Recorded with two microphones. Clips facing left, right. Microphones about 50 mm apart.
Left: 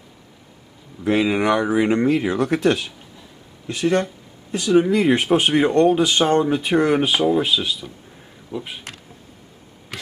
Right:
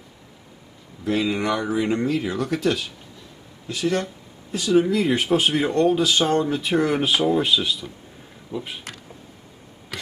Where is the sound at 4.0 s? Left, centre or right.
Centre.